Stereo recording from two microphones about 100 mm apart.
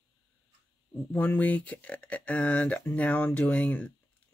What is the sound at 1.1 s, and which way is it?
Speech, 20° left (ahead or behind).